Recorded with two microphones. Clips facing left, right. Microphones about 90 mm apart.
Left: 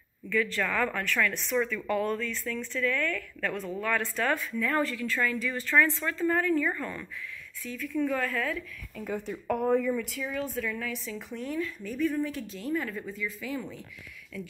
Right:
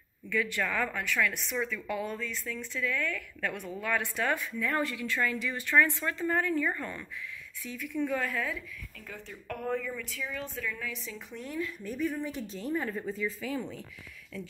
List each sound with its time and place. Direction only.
0.3 s speech: 20° right (ahead or behind)
0.8 s a woman's voice: 5° right (ahead or behind)
3.0 s speech: 20° right (ahead or behind)
8.9 s a woman's voice: 15° left (ahead or behind); by 12.4 s 15° right (ahead or behind)
12.5 s a woman's voice: 25° right (ahead or behind)